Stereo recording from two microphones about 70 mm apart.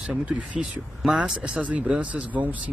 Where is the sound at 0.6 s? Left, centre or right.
Centre.